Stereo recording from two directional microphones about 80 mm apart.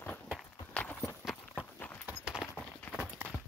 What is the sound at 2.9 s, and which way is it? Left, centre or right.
Clip-clop, left.